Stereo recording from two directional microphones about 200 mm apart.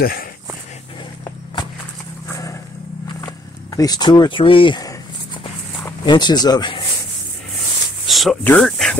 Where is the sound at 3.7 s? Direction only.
20° left (ahead or behind).